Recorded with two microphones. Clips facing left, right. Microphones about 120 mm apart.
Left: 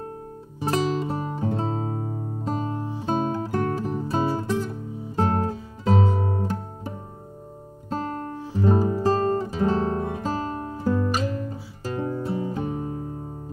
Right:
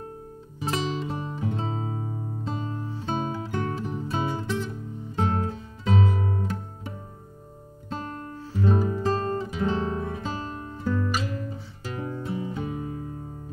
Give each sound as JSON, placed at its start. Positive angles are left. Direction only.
{"t": 0.6, "sound": "music", "side_deg": 40}
{"t": 2.7, "sound": "music", "side_deg": 15}
{"t": 3.1, "sound": "music", "side_deg": 40}
{"t": 8.5, "sound": "guitar", "side_deg": 35}
{"t": 10.8, "sound": "music", "side_deg": 35}